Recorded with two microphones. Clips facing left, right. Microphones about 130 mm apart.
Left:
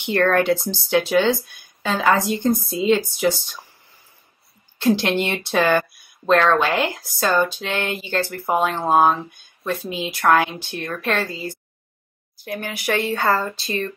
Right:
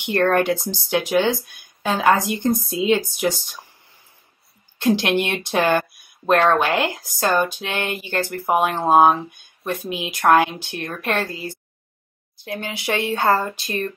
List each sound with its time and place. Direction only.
0.0 s speech: 15° right (ahead or behind)
4.7 s speech: 15° right (ahead or behind)
12.4 s speech: 20° right (ahead or behind)